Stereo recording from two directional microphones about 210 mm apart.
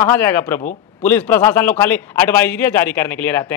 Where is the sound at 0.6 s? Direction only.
35° left (ahead or behind).